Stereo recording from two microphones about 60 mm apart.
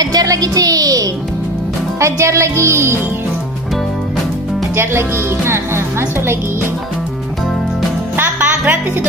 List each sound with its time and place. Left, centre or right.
0.0 s a woman's voice: right
2.0 s speech: right
4.7 s speech: right
8.2 s music: right